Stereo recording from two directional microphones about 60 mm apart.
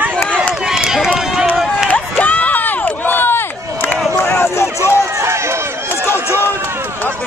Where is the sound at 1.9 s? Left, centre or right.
Left.